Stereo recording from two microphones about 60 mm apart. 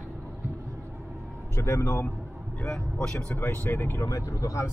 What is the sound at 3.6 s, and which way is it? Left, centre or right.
Speech, left.